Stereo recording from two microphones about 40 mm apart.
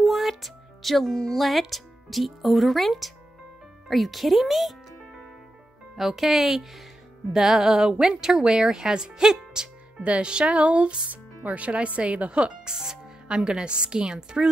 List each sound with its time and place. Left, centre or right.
0.0 s music: centre
1.3 s a woman's voice: centre
10.0 s speech: right
12.6 s speech: centre